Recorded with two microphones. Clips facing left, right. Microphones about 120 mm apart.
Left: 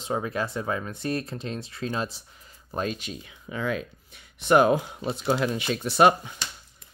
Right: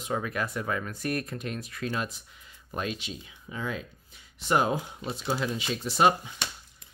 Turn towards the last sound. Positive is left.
turn(degrees=65)  # may be behind; listen again after turning